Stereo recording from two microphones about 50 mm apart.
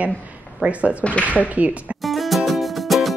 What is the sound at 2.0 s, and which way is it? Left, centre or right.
Music, centre.